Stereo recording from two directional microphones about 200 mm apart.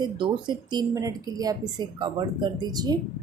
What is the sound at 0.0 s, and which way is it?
Speech, 20° right (ahead or behind).